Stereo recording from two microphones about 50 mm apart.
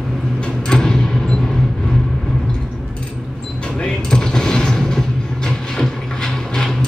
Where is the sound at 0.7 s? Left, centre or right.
Centre.